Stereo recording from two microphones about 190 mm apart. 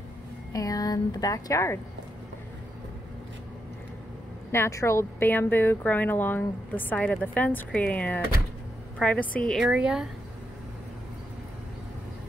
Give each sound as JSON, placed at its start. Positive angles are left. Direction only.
{"t": 0.5, "sound": "a woman's voice", "side_deg": 20}
{"t": 4.5, "sound": "a woman's voice", "side_deg": 15}